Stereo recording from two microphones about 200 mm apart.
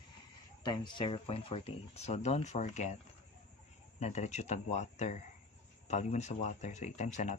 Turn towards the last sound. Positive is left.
turn(degrees=35)  # may be behind; listen again after turning